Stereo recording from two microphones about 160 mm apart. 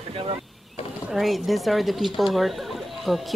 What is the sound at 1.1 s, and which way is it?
A woman's voice, centre (ahead or behind).